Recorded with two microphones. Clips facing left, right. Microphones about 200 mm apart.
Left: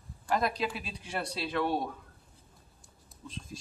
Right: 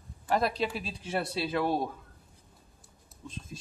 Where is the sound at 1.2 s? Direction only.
5° right (ahead or behind).